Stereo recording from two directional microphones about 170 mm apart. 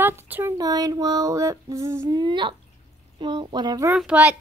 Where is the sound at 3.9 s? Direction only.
5° right (ahead or behind).